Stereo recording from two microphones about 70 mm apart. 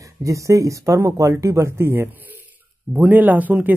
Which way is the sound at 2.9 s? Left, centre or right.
Right.